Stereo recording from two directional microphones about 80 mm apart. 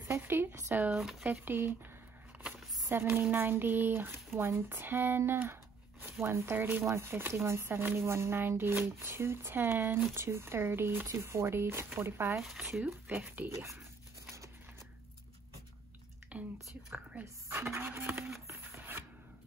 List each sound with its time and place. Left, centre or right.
0.1 s speech: right
2.9 s speech: right
12.4 s speech: centre
13.5 s speech: right
16.3 s whispering: centre
17.2 s speech: right
18.5 s a sound: right